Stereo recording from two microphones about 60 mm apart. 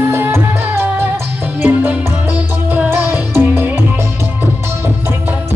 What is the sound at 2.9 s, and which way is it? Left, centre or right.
Music, right.